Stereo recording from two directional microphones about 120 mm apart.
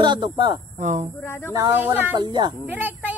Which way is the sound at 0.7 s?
90° right.